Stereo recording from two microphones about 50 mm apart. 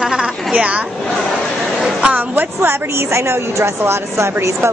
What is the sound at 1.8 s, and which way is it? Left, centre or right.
Speech, centre.